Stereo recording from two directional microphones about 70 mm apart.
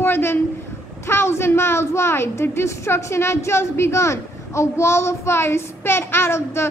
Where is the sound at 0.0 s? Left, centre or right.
Left.